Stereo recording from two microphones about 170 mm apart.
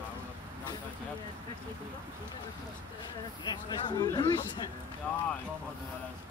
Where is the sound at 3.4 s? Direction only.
25° left (ahead or behind).